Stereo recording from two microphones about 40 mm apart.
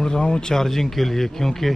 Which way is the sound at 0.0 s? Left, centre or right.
Centre.